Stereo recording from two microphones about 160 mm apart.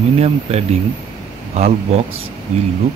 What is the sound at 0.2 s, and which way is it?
Speech, 40° right (ahead or behind).